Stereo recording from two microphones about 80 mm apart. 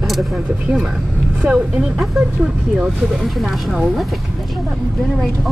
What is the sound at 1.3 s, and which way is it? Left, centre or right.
Speech, centre.